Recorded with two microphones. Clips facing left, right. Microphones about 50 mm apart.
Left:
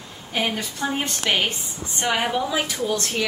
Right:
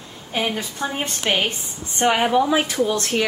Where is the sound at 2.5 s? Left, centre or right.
Right.